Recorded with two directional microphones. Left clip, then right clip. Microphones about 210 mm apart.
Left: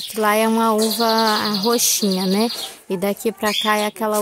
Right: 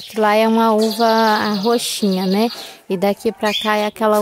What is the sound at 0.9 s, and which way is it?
Bird, 10° right (ahead or behind).